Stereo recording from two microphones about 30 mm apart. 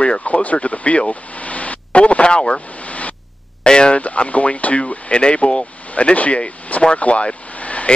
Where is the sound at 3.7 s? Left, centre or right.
Left.